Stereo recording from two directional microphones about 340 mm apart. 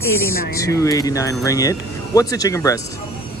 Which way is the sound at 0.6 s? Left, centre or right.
Centre.